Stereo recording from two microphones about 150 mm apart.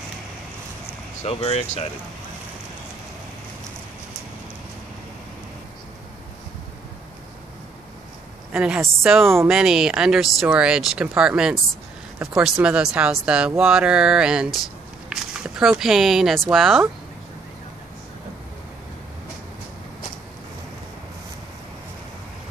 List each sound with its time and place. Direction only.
1.2 s speech: 40° left (ahead or behind)
8.5 s a woman's voice: 5° right (ahead or behind)